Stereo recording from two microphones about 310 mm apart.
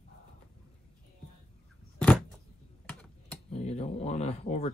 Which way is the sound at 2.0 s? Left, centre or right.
Centre.